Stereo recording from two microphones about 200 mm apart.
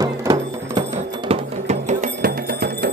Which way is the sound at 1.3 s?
35° right (ahead or behind).